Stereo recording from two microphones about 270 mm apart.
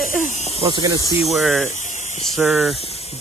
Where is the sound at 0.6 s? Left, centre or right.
Centre.